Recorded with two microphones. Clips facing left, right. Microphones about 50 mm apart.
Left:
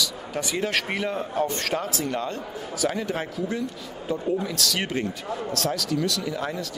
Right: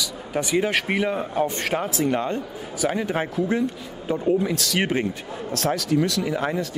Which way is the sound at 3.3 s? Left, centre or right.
Right.